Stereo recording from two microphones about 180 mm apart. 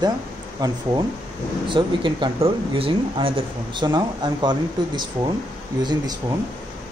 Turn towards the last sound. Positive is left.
turn(degrees=-25)  # may be behind; listen again after turning